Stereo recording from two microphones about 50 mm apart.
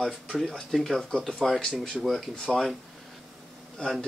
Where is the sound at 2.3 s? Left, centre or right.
Centre.